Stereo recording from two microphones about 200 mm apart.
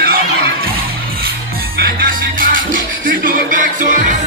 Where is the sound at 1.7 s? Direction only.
45° right (ahead or behind).